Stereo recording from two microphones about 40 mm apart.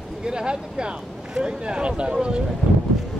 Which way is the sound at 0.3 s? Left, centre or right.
Right.